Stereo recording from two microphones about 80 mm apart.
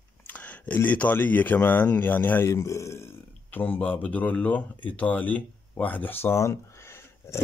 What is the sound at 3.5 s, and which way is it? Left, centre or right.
Speech, left.